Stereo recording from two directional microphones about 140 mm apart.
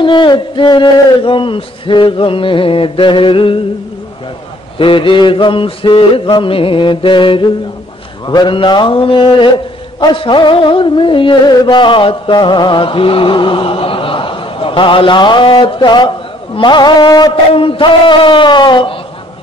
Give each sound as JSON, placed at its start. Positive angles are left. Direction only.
{"t": 0.0, "sound": "music", "side_deg": 35}
{"t": 4.7, "sound": "music", "side_deg": 40}